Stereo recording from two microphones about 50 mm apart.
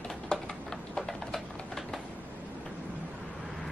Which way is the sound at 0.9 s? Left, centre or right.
Centre.